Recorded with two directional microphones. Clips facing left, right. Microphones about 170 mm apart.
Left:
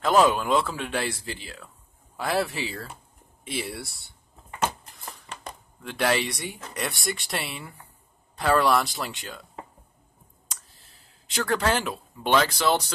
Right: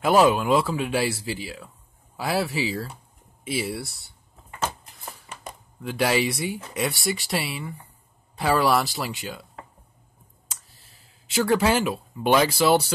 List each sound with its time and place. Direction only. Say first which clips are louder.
0.0 s speech: right 2 dB; 10° right (ahead or behind)
5.9 s speech: right 2 dB; 5° right (ahead or behind)
11.2 s speech: right 4 dB; 5° right (ahead or behind)